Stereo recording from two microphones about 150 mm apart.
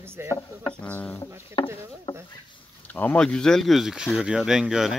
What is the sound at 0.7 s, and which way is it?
Speech, 10° left (ahead or behind).